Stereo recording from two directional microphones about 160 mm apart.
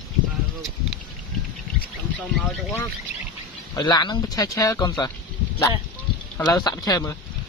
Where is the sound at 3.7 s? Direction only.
25° left (ahead or behind).